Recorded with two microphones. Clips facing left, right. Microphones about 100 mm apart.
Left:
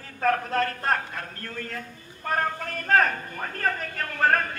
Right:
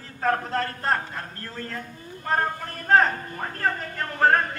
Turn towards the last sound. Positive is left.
turn(degrees=-25)  # may be behind; listen again after turning